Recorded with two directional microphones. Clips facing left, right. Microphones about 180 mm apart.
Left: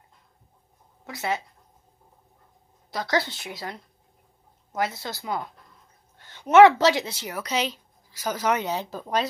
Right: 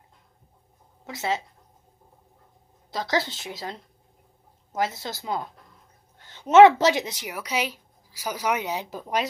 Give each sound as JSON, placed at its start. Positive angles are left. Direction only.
{"t": 1.0, "sound": "speech", "side_deg": -20}
{"t": 2.9, "sound": "a woman's voice", "side_deg": -20}